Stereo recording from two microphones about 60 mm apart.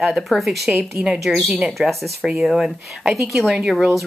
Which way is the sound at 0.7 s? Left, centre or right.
Right.